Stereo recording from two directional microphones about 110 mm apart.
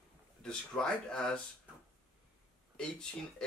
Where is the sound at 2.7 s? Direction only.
5° left (ahead or behind).